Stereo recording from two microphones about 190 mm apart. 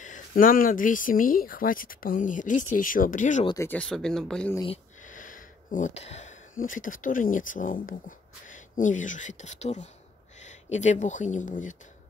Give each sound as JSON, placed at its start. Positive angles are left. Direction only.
{"t": 0.0, "sound": "speech", "side_deg": 45}
{"t": 3.4, "sound": "speech", "side_deg": 15}
{"t": 5.0, "sound": "a sound", "side_deg": 45}
{"t": 6.6, "sound": "speech", "side_deg": 45}